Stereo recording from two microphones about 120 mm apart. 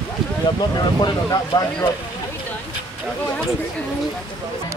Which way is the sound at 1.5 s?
35° left (ahead or behind).